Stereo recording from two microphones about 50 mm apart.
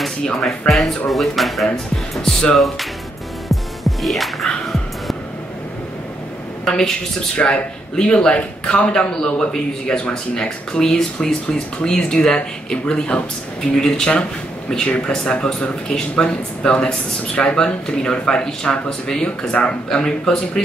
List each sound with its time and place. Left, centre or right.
0.4 s a man's voice: centre
3.4 s music: centre
6.6 s a woman's voice: centre
19.2 s a man's voice: left